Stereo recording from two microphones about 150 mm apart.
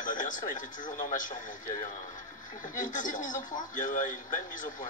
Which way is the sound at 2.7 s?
60° left (ahead or behind).